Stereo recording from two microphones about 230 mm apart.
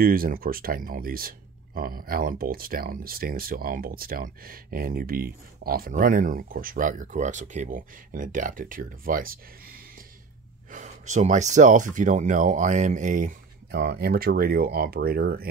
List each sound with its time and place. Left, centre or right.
0.0 s speech: right